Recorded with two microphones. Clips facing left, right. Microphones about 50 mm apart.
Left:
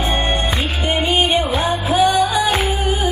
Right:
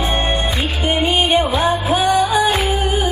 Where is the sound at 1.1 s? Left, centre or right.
Right.